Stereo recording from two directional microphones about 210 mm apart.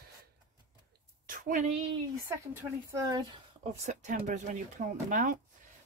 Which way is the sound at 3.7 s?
35° right (ahead or behind).